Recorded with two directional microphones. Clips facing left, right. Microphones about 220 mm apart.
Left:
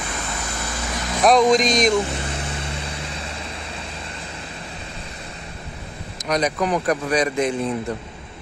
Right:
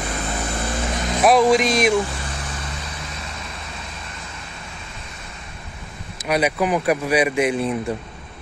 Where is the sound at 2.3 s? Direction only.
25° left (ahead or behind).